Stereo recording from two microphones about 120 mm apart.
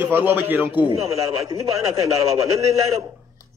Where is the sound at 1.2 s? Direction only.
25° right (ahead or behind).